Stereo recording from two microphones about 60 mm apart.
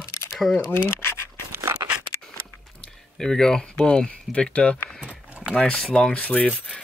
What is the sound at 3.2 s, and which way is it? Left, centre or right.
Speech, centre.